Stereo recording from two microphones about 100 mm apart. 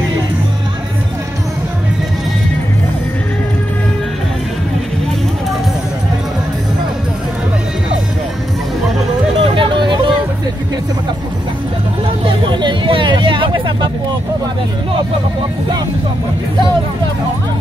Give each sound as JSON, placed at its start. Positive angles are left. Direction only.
{"t": 9.4, "sound": "music", "side_deg": -55}
{"t": 12.3, "sound": "hubbub", "side_deg": -55}